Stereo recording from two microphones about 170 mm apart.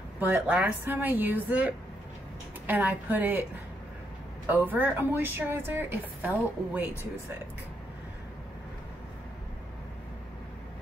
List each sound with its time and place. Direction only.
0.2 s a woman's voice: 10° right (ahead or behind)
4.5 s a woman's voice: 10° right (ahead or behind)